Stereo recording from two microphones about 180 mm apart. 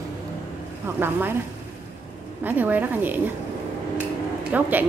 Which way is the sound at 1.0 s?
10° right (ahead or behind).